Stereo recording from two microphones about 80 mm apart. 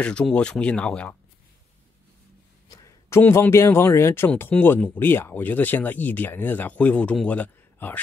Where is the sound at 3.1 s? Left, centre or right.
Left.